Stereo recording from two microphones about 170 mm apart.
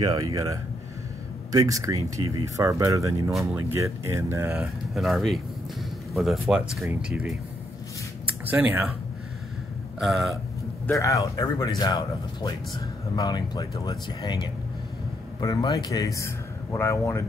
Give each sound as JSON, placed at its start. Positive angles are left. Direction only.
{"t": 0.3, "sound": "speech", "side_deg": -20}
{"t": 4.9, "sound": "speech", "side_deg": 0}
{"t": 8.5, "sound": "speech", "side_deg": -10}
{"t": 9.9, "sound": "speech", "side_deg": 0}
{"t": 10.9, "sound": "speech", "side_deg": 20}